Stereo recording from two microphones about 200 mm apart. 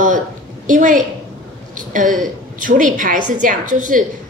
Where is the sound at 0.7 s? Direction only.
40° right (ahead or behind).